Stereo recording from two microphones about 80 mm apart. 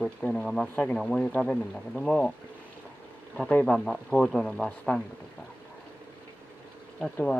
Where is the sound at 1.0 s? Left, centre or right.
Centre.